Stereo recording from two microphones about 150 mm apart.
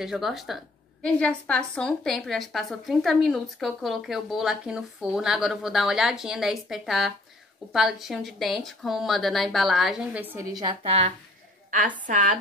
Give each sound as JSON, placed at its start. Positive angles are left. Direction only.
{"t": 0.0, "sound": "a woman's voice", "side_deg": 0}
{"t": 10.5, "sound": "a woman's voice", "side_deg": -30}
{"t": 11.7, "sound": "a woman's voice", "side_deg": -60}